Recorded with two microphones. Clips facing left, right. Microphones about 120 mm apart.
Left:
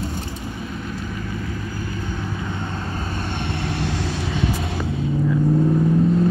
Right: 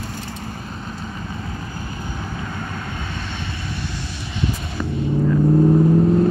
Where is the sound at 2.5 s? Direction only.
25° left (ahead or behind).